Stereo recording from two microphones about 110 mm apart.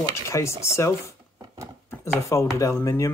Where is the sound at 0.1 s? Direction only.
25° left (ahead or behind).